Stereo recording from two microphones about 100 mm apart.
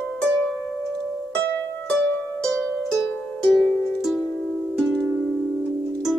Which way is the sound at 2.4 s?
5° left (ahead or behind).